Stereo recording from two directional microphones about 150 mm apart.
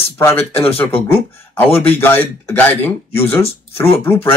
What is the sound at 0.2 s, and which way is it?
Speech, 15° left (ahead or behind).